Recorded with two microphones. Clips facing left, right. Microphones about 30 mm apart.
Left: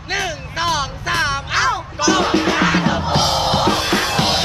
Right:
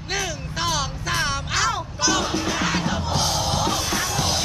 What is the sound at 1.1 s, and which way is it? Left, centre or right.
Music, left.